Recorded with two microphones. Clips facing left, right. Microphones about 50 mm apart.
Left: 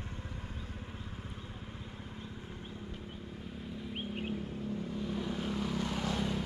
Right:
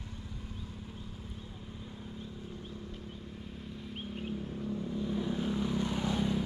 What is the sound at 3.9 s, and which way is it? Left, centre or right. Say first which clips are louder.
Vehicle: left 1 dB; left.